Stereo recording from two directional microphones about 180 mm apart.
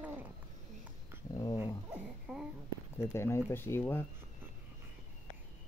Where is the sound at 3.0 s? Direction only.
15° left (ahead or behind).